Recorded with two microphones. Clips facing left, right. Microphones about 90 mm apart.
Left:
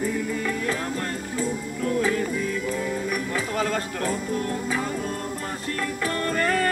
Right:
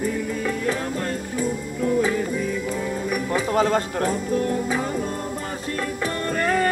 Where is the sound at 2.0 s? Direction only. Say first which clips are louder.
Even; 10° right (ahead or behind).